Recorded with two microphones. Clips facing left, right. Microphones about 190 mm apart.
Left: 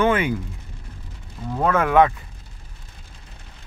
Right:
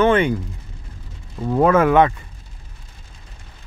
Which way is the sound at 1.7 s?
5° right (ahead or behind).